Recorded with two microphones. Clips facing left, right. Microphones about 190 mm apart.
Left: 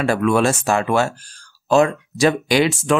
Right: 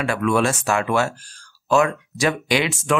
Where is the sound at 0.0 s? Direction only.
35° left (ahead or behind).